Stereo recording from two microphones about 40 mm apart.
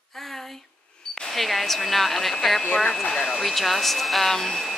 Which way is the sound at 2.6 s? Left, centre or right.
Left.